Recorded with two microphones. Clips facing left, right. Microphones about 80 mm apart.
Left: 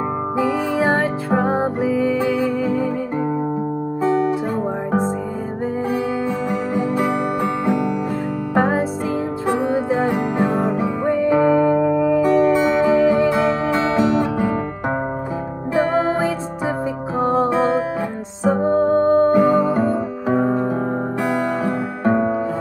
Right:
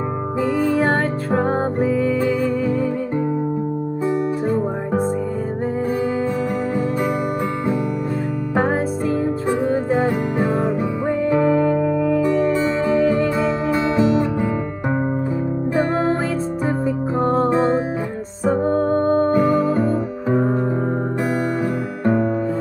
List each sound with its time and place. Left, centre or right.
0.4 s music: centre
8.5 s music: centre
15.7 s music: centre
21.6 s music: centre